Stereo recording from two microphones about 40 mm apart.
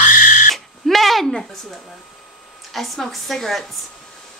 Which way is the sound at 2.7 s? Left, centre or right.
Centre.